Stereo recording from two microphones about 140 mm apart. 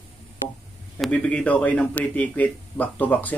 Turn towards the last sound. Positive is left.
turn(degrees=10)  # may be behind; listen again after turning